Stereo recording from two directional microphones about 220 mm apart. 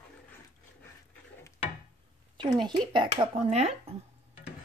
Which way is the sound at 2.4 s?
20° right (ahead or behind).